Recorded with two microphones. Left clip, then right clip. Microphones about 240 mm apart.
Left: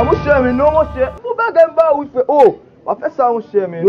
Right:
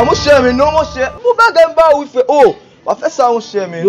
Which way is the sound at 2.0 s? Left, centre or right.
Centre.